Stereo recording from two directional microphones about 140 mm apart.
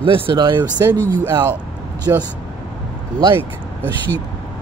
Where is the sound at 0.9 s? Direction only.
15° left (ahead or behind).